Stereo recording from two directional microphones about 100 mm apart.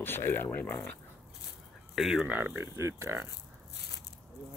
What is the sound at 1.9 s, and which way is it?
Speech, 5° right (ahead or behind).